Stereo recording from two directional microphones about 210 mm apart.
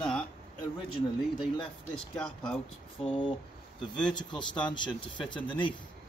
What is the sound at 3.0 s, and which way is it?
Speech, 25° left (ahead or behind).